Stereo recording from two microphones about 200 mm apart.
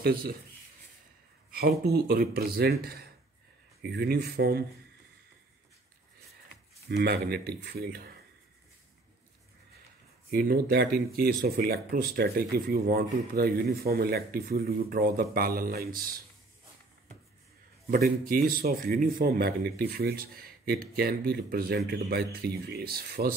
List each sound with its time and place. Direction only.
0.0 s speech: 45° right (ahead or behind)
1.5 s speech: 50° right (ahead or behind)
6.9 s speech: 55° right (ahead or behind)
10.3 s speech: 50° right (ahead or behind)
17.9 s speech: 45° right (ahead or behind)